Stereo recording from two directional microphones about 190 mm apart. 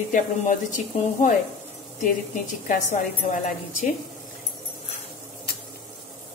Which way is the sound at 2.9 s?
40° left (ahead or behind).